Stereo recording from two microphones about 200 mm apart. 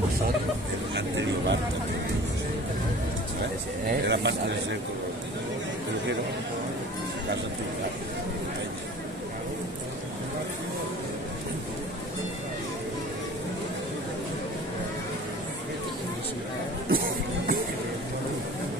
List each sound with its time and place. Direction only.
0.9 s a sound: 60° right (ahead or behind)
3.8 s speech: 55° right (ahead or behind)
16.9 s music: 45° right (ahead or behind)